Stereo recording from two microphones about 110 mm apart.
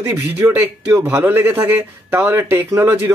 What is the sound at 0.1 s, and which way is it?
A man's voice, 15° right (ahead or behind).